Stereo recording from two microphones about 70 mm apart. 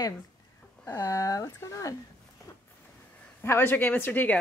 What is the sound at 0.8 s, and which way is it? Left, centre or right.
Speech, left.